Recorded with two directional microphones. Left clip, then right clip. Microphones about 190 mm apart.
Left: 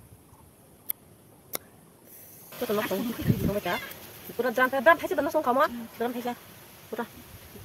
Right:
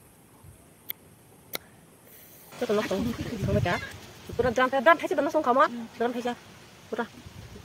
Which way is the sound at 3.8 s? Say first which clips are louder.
Even; centre (ahead or behind).